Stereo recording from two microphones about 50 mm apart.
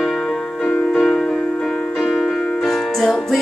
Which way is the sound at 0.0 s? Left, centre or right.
Centre.